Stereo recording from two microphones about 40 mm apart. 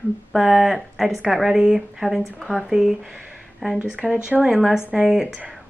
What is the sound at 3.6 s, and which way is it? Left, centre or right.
A woman's voice, centre.